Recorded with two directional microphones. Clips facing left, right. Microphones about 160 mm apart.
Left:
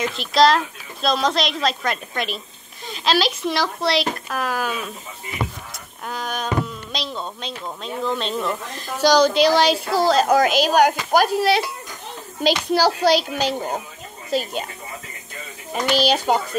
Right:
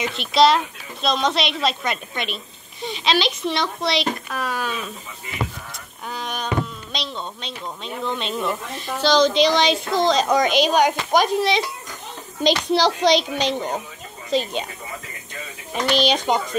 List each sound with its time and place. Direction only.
0.0 s a woman's voice: centre (ahead or behind)
6.0 s a woman's voice: centre (ahead or behind)
9.0 s a woman's voice: 10° left (ahead or behind)
15.7 s speech: 5° left (ahead or behind)